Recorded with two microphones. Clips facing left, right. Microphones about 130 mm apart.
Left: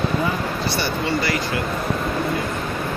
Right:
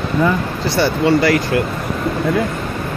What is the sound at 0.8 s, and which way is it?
Speech, 80° right.